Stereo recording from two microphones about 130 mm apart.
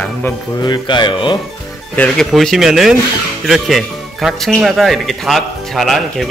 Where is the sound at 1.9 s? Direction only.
10° left (ahead or behind).